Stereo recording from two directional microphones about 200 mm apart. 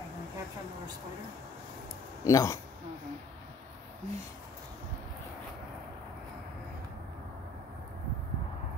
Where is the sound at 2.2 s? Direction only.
15° left (ahead or behind).